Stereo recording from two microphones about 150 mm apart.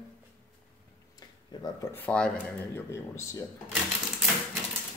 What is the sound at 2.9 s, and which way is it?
Speech, 20° left (ahead or behind).